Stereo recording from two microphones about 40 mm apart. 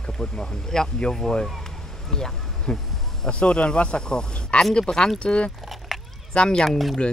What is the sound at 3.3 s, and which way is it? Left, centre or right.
Speech, left.